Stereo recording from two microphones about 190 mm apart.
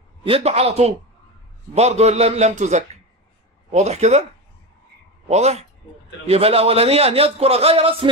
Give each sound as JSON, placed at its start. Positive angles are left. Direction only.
{"t": 0.2, "sound": "a man's voice", "side_deg": -30}
{"t": 5.3, "sound": "a man's voice", "side_deg": -35}